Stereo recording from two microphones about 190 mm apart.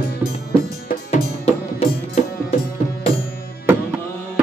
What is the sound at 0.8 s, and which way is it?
Music, 35° left (ahead or behind).